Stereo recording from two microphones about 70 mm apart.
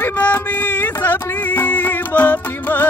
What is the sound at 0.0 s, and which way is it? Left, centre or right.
Music, left.